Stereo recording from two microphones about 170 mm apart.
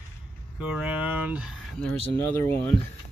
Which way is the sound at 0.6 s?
5° right (ahead or behind).